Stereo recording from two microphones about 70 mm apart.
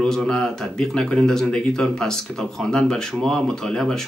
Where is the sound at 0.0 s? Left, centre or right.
Centre.